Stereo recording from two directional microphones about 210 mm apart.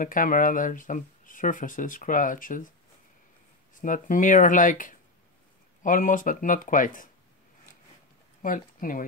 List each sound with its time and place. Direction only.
0.0 s speech: 40° left (ahead or behind)
3.7 s speech: 40° left (ahead or behind)
8.4 s speech: 40° left (ahead or behind)